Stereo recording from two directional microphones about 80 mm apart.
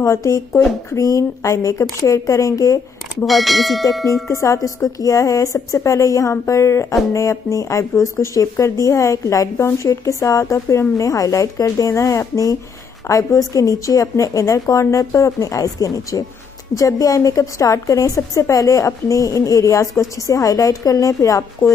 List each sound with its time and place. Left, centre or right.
0.0 s speech: left
3.3 s speech: centre
4.3 s speech: left